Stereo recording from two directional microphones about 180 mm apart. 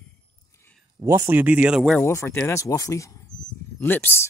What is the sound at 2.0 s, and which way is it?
Speech, 15° left (ahead or behind).